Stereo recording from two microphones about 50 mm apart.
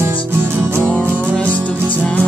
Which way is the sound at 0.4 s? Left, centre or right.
Right.